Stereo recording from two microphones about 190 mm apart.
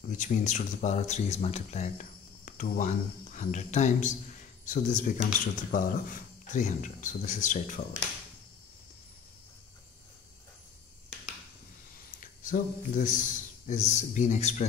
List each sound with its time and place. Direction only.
0.2 s speech: 40° left (ahead or behind)
12.2 s a man's voice: 45° left (ahead or behind)